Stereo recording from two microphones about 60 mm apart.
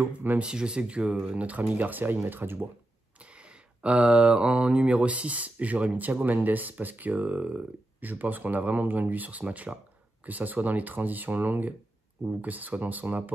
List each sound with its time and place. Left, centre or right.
0.0 s speech: right
0.4 s speech: centre; by 2.6 s right
3.2 s speech: centre